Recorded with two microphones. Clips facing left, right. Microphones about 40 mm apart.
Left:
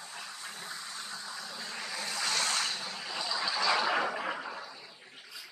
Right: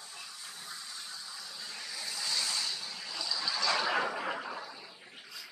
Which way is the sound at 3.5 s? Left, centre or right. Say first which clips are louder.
Left 2 dB; centre.